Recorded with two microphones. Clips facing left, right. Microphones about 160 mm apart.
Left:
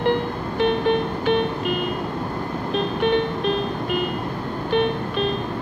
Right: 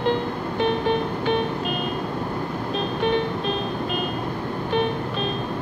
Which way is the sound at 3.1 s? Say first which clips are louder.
Left 3 dB; 60° left (ahead or behind).